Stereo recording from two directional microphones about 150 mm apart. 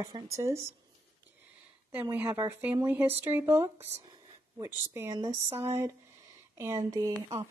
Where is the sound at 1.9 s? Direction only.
15° right (ahead or behind).